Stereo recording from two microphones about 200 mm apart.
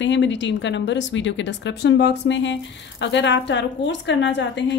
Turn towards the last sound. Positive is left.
turn(degrees=60)  # may be behind; listen again after turning